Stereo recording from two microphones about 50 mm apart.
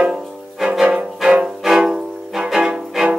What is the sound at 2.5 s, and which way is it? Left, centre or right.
Music, centre.